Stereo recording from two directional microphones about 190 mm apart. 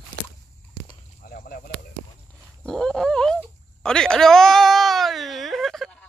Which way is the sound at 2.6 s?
5° left (ahead or behind).